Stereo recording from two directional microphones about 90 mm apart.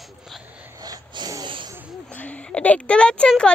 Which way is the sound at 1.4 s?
65° right (ahead or behind).